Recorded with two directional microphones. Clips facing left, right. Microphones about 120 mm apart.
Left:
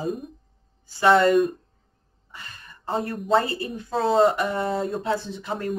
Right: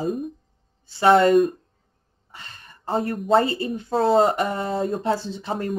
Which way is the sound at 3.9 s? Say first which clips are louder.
Right 1 dB; 40° right (ahead or behind).